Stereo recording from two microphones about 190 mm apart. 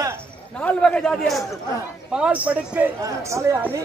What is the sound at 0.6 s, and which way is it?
A man's voice, 5° left (ahead or behind).